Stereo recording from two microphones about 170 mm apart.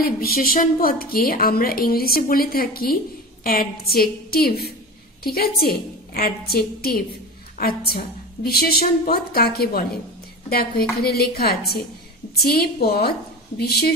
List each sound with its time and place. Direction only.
0.0 s a woman's voice: 60° left (ahead or behind)